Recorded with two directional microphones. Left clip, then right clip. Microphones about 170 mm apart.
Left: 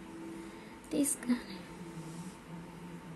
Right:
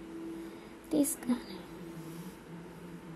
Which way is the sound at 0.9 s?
25° right (ahead or behind).